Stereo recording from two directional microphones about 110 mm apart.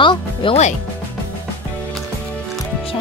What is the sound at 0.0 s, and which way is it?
Music, 50° left (ahead or behind).